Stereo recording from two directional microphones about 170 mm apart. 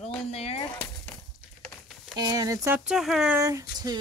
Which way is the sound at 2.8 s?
5° right (ahead or behind).